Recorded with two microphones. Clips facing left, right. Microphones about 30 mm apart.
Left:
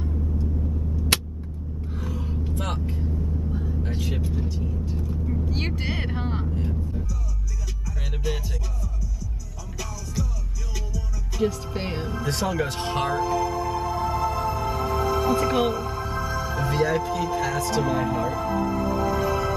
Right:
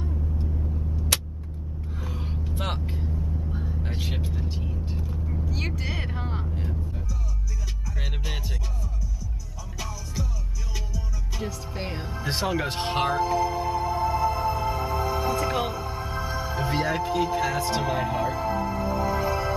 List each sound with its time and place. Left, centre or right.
2.0 s vehicle: right
5.5 s vehicle: left
6.5 s vehicle: centre
11.4 s music: centre
12.3 s speech: right
13.7 s music: centre
15.4 s speech: centre
15.8 s speech: centre